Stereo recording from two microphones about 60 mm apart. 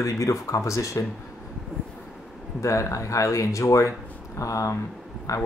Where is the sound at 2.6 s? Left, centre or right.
Left.